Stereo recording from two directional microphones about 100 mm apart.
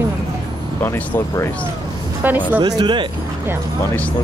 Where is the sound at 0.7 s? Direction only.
20° left (ahead or behind).